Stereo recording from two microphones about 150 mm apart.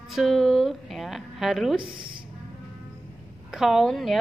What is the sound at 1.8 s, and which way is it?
Speech, 35° right (ahead or behind).